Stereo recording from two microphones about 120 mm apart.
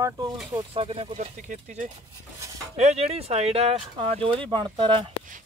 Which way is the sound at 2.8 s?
65° right (ahead or behind).